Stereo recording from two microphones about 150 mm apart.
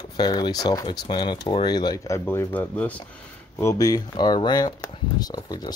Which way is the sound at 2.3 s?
15° left (ahead or behind).